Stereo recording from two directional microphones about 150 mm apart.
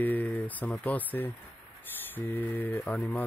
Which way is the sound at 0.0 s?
10° left (ahead or behind).